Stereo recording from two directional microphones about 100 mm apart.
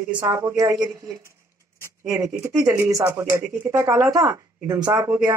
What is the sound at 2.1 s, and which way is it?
Speech, 35° right (ahead or behind).